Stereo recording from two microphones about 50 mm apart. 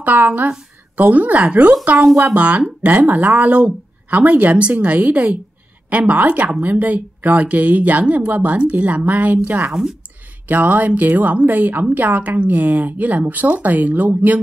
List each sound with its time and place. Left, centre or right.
0.0 s speech: right
9.7 s speech: centre
10.5 s speech: right